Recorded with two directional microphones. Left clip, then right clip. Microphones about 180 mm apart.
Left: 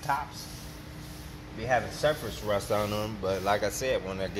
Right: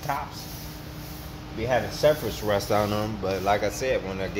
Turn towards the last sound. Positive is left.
turn(degrees=-5)  # may be behind; listen again after turning